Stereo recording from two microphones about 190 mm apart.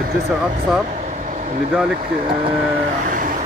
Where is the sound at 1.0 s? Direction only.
40° right (ahead or behind).